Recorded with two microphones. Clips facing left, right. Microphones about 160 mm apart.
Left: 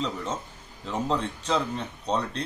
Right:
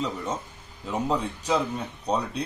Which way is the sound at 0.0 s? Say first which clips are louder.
Right 1 dB; 10° right (ahead or behind).